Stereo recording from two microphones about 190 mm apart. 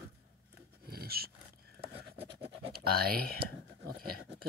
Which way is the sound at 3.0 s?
50° right (ahead or behind).